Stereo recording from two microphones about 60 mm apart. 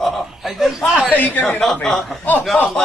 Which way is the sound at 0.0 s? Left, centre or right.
Centre.